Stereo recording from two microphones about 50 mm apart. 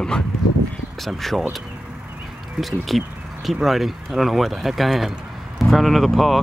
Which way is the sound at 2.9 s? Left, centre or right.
Centre.